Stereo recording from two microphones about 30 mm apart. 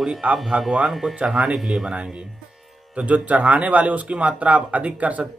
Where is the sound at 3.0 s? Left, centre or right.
Right.